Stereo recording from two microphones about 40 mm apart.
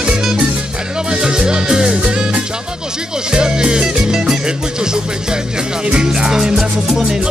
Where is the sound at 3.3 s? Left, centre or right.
Centre.